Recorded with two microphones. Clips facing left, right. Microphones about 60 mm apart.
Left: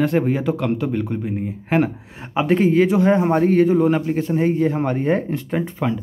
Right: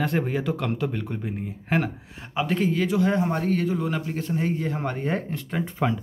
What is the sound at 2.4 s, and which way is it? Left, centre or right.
A man's voice, left.